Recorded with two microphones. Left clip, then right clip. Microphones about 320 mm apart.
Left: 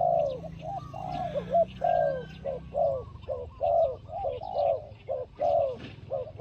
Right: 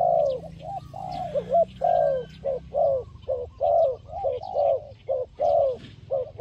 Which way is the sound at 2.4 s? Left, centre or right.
Right.